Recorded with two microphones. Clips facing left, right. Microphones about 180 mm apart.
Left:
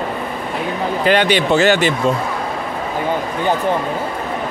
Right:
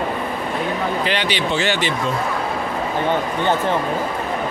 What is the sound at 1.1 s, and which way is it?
Speech, 50° left (ahead or behind).